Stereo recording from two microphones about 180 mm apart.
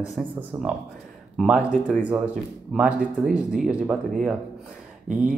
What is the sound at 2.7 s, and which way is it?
Speech, 5° right (ahead or behind).